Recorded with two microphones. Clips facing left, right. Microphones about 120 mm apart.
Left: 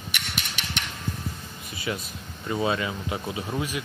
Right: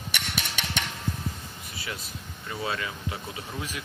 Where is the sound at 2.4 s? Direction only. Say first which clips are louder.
Left 6 dB; 20° left (ahead or behind).